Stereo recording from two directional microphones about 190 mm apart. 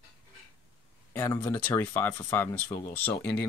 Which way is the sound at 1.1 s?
15° left (ahead or behind).